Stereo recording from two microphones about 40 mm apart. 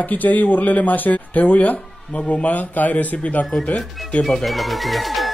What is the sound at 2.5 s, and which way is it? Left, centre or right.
Speech, left.